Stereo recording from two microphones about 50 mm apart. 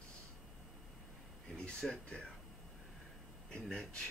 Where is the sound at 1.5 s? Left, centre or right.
Centre.